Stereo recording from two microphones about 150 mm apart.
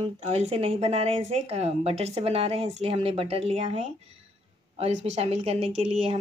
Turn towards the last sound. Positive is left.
turn(degrees=-40)  # may be behind; listen again after turning